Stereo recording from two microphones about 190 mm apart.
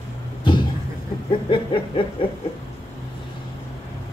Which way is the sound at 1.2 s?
25° left (ahead or behind).